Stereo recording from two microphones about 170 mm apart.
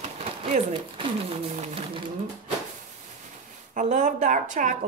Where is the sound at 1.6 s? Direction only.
35° right (ahead or behind).